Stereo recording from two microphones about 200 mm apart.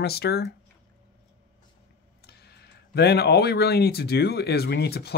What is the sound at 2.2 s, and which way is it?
Speech, 55° left (ahead or behind).